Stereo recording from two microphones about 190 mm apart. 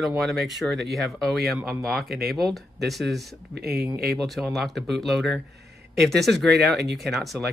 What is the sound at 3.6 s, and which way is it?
Speech, 55° right (ahead or behind).